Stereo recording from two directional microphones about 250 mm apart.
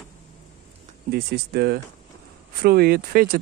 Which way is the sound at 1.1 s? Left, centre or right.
Right.